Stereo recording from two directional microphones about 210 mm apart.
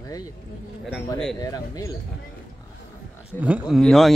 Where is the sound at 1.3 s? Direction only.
15° left (ahead or behind).